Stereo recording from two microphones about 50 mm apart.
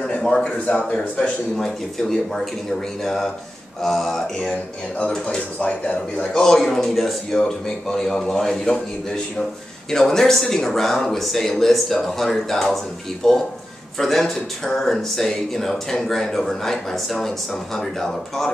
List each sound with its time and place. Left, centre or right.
0.4 s speech: left
1.2 s speech: centre
5.6 s speech: left
6.3 s speech: centre